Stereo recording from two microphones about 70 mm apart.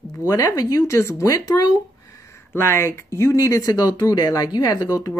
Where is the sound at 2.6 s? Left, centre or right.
Left.